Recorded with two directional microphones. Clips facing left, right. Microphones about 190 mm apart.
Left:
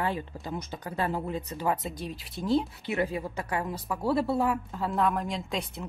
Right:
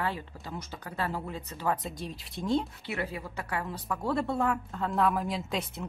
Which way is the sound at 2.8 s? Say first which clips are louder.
Left 6 dB; 20° left (ahead or behind).